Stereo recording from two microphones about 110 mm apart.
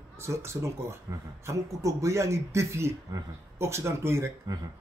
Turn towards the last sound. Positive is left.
turn(degrees=-25)  # may be behind; listen again after turning